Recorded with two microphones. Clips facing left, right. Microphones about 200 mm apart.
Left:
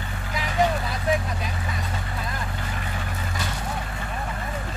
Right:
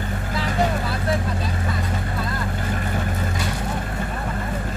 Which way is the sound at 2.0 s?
45° right (ahead or behind).